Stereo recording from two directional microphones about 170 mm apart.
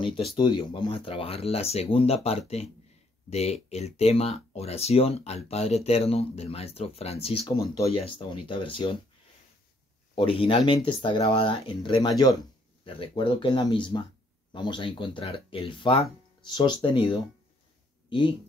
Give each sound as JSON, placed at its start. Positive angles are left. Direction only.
{"t": 0.4, "sound": "speech", "side_deg": 25}
{"t": 10.1, "sound": "speech", "side_deg": 30}